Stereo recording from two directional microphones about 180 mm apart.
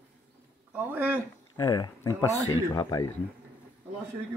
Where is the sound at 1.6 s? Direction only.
20° left (ahead or behind).